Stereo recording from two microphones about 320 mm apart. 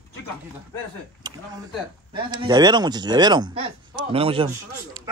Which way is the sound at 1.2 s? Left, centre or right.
Centre.